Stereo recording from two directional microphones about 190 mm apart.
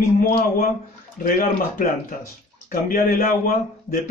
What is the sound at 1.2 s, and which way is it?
Speech, 45° left (ahead or behind).